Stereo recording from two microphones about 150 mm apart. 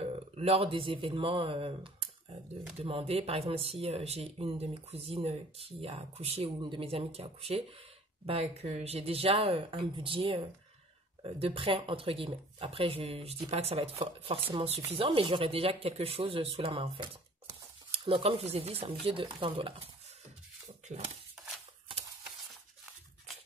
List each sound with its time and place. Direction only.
0.0 s speech: 40° right (ahead or behind)
20.9 s speech: 45° right (ahead or behind)